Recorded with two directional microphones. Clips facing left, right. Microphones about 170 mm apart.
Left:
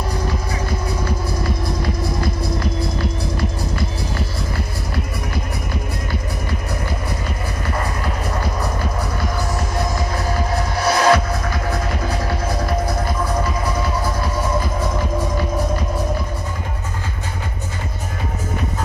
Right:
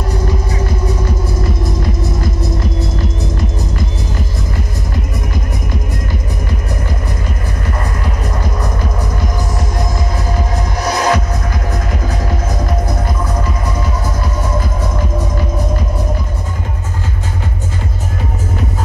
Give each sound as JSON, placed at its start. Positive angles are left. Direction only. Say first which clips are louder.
{"t": 10.8, "sound": "music", "louder": "even", "side_deg": -15}